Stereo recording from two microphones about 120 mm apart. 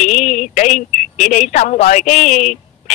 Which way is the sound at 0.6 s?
80° left.